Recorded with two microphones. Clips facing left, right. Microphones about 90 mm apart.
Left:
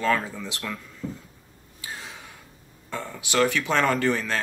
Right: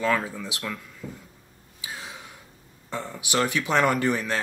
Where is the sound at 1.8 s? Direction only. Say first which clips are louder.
Even; 15° right (ahead or behind).